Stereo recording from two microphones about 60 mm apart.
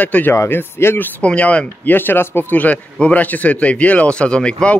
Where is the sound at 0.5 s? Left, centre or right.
Left.